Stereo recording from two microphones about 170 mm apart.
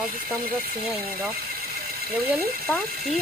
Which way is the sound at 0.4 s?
60° right (ahead or behind).